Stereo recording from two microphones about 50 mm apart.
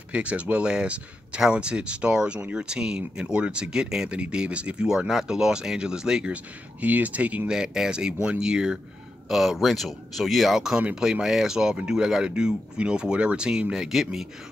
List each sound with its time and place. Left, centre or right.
0.1 s speech: right
4.8 s speech: centre
6.3 s speech: right
7.4 s speech: centre
9.3 s speech: centre